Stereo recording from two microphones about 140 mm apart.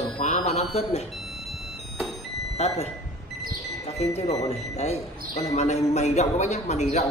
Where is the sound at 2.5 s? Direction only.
50° left (ahead or behind).